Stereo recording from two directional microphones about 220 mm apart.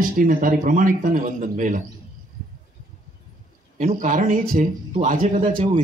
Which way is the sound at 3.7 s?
35° right (ahead or behind).